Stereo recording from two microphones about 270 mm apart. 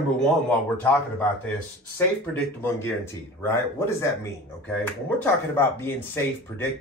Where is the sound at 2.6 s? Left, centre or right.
Centre.